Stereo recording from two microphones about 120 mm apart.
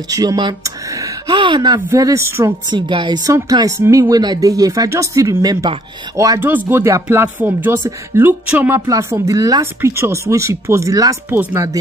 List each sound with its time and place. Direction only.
0.1 s speech: 30° right (ahead or behind)
1.2 s speech: 40° right (ahead or behind)
1.9 s speech: 25° right (ahead or behind)
2.7 s speech: 40° right (ahead or behind)
3.3 s speech: 30° right (ahead or behind)
3.8 s speech: 20° right (ahead or behind)
4.1 s speech: 35° right (ahead or behind)
6.4 s speech: 20° right (ahead or behind)
8.7 s speech: 25° right (ahead or behind)
9.8 s speech: 20° right (ahead or behind)
11.2 s speech: 20° right (ahead or behind)